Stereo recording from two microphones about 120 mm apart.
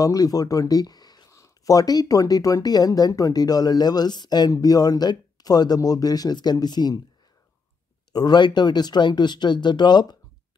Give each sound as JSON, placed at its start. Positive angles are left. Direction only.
{"t": 0.0, "sound": "speech", "side_deg": 30}
{"t": 8.1, "sound": "speech", "side_deg": 35}